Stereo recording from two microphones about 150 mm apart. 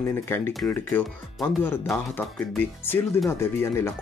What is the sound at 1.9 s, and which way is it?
Speech, 10° left (ahead or behind).